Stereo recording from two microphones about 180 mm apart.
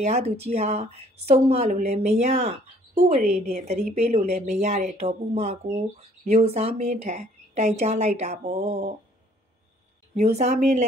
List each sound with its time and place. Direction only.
0.0 s speech: 35° right (ahead or behind)
10.1 s speech: 35° right (ahead or behind)